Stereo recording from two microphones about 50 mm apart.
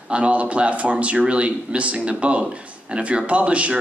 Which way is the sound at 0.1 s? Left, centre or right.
Right.